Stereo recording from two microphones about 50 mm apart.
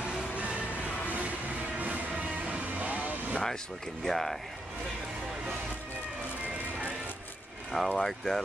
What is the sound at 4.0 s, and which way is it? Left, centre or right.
Speech, centre.